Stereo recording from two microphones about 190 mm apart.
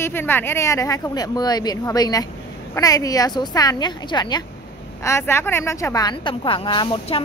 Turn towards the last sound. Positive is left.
turn(degrees=25)  # may be behind; listen again after turning